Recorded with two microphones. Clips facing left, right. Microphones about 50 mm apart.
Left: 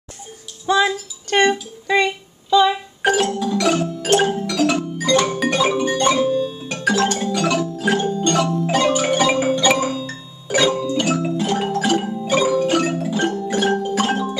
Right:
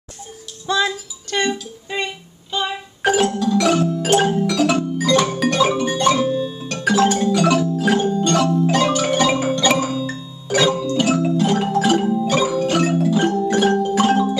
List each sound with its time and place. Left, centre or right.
0.7 s music: centre
1.3 s music: left
1.9 s music: left
3.0 s music: centre